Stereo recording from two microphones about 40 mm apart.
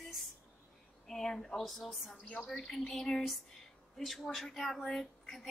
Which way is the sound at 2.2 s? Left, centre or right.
Left.